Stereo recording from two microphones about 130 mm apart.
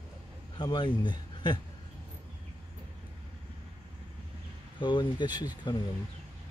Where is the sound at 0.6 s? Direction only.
35° left (ahead or behind).